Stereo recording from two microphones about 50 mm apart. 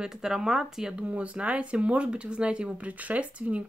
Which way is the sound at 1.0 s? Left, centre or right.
Right.